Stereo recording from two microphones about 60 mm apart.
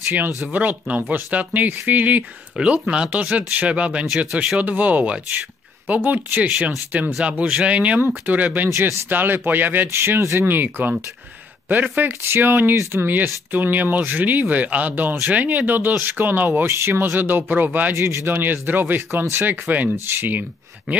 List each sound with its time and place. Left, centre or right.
0.5 s speech: right
2.6 s speech: centre
4.3 s speech: centre
4.6 s speech: right
8.0 s speech: right
9.8 s speech: right
10.5 s speech: right
16.6 s speech: right
17.9 s speech: right